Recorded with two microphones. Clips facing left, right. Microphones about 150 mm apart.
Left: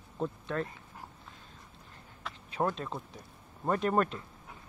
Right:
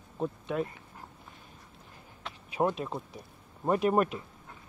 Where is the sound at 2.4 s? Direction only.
10° right (ahead or behind).